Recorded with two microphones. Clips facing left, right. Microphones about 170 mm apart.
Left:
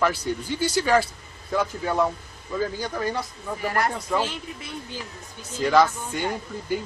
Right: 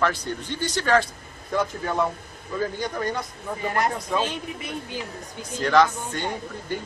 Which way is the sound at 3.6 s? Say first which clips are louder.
Even; 20° right (ahead or behind).